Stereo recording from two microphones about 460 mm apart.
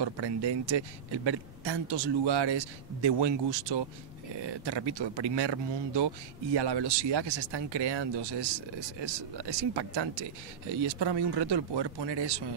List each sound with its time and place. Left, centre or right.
0.0 s speech: right